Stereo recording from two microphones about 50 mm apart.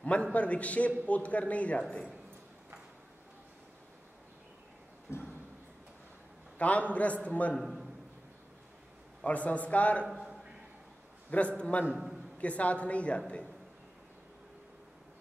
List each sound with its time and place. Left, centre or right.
0.0 s a man's voice: left
6.6 s a man's voice: left
7.6 s a sound: centre
9.2 s a man's voice: left
10.0 s a sound: centre
11.2 s a man's voice: left